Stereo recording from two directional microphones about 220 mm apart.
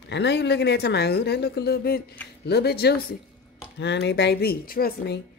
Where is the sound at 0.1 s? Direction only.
50° left (ahead or behind).